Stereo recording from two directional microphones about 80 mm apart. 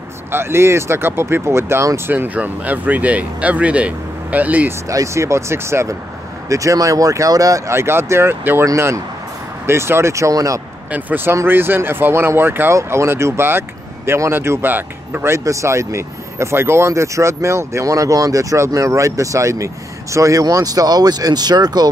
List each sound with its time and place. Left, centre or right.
0.3 s speech: right
2.0 s speech: right
4.8 s speech: right
10.9 s speech: right